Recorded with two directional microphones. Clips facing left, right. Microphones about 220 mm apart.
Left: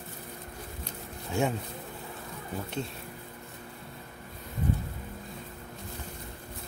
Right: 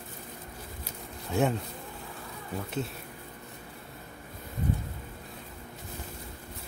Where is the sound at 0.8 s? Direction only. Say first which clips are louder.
Right 1 dB; centre (ahead or behind).